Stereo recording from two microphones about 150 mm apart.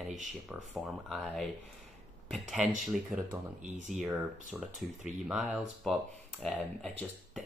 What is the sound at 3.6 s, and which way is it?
Speech, 55° right (ahead or behind).